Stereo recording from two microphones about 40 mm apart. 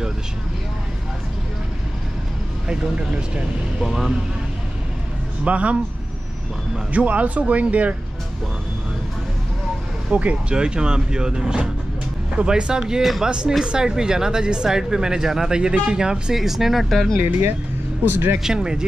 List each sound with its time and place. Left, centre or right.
2.7 s speech: right
3.8 s speech: centre
5.4 s speech: right
6.9 s speech: right
10.1 s speech: right
10.5 s speech: right
16.3 s speech: centre
18.0 s speech: right
18.4 s speech: centre